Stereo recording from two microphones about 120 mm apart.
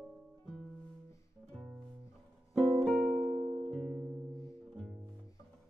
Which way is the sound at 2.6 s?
5° left (ahead or behind).